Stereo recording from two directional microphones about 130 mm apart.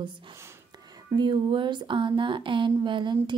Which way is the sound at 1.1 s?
35° right (ahead or behind).